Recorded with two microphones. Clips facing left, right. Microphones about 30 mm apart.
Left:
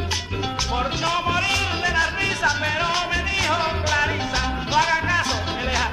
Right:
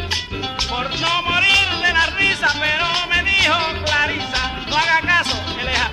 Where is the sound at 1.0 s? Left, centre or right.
Right.